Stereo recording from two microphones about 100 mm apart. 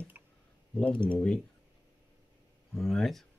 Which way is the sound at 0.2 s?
20° right (ahead or behind).